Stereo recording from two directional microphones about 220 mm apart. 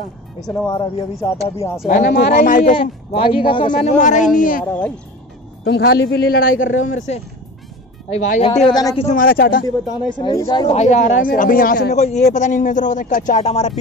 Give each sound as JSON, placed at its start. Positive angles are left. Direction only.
{"t": 0.5, "sound": "speech", "side_deg": 15}
{"t": 1.9, "sound": "a man's voice", "side_deg": 40}
{"t": 2.7, "sound": "speech", "side_deg": 25}
{"t": 4.0, "sound": "a man's voice", "side_deg": 35}
{"t": 4.6, "sound": "speech", "side_deg": 5}
{"t": 5.7, "sound": "speech", "side_deg": 50}
{"t": 6.5, "sound": "speech", "side_deg": 60}
{"t": 7.1, "sound": "a man's voice", "side_deg": 30}
{"t": 8.7, "sound": "speech", "side_deg": 20}
{"t": 9.0, "sound": "a man's voice", "side_deg": 40}
{"t": 9.7, "sound": "speech", "side_deg": 20}
{"t": 10.7, "sound": "a man's voice", "side_deg": 30}